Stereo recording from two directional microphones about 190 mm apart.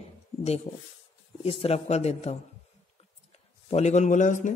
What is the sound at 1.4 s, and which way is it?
Speech, 30° left (ahead or behind).